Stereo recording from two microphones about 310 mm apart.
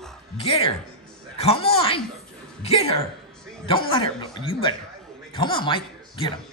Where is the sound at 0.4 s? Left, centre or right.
Centre.